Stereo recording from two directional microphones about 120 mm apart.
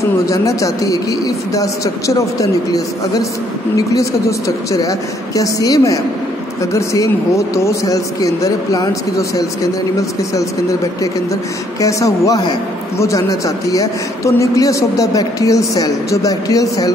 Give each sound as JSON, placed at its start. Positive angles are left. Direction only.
{"t": 0.3, "sound": "a man's voice", "side_deg": 25}
{"t": 11.8, "sound": "a man's voice", "side_deg": 30}